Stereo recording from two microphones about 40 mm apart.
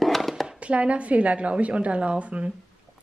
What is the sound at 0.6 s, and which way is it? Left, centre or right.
Speech, right.